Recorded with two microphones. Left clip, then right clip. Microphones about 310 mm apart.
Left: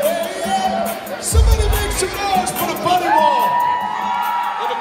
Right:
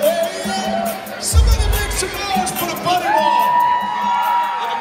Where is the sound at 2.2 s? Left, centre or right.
Left.